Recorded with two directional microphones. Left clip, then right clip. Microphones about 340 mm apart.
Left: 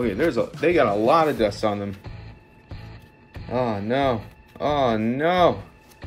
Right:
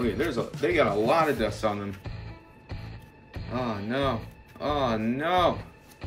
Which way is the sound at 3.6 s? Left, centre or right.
Centre.